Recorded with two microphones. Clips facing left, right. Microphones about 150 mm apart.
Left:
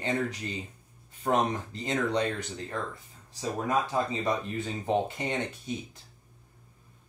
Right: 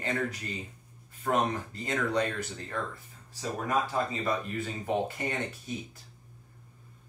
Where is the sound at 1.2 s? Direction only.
20° left (ahead or behind).